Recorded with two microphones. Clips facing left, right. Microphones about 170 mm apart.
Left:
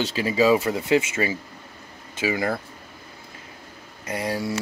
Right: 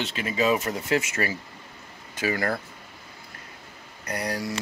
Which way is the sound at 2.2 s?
15° left (ahead or behind).